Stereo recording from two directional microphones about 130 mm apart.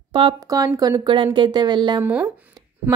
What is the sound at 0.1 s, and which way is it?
A woman's voice, 35° right (ahead or behind).